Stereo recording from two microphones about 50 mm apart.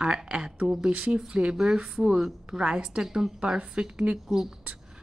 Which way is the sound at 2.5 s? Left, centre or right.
Right.